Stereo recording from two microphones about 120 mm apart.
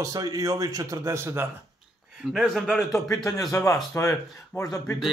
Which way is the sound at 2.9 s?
30° left (ahead or behind).